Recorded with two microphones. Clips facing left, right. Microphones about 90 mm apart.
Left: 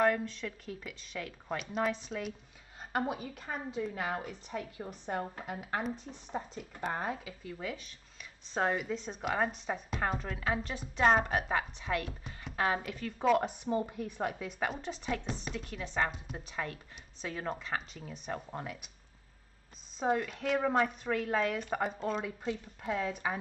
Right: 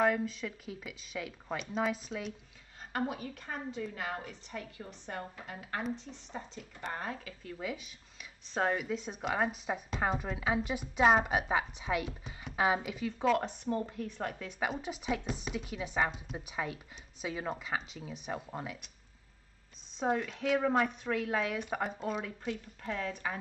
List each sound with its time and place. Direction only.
0.0 s a woman's voice: 5° right (ahead or behind)
3.3 s a woman's voice: 40° left (ahead or behind)
4.5 s a woman's voice: 20° left (ahead or behind)
6.3 s speech: 40° left (ahead or behind)
6.9 s a woman's voice: 20° left (ahead or behind)
7.2 s speech: centre (ahead or behind)
13.3 s speech: 5° left (ahead or behind)
14.6 s a woman's voice: 5° right (ahead or behind)
20.0 s a woman's voice: centre (ahead or behind)
22.4 s speech: 15° left (ahead or behind)